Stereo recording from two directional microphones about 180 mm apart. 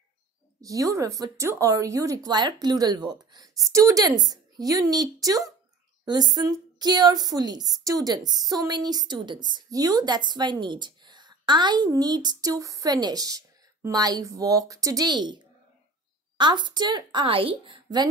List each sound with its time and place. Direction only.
0.6 s a woman's voice: 20° right (ahead or behind)